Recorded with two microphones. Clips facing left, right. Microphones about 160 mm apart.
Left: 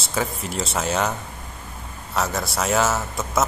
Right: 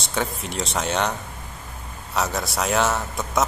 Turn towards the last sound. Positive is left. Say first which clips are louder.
# even
turn(degrees=0)  # may be behind; listen again after turning